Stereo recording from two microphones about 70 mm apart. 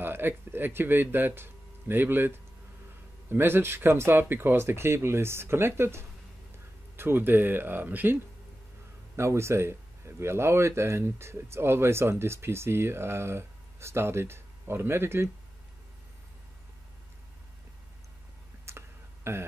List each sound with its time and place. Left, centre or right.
0.0 s speech: right
9.1 s speech: right
18.7 s a sound: right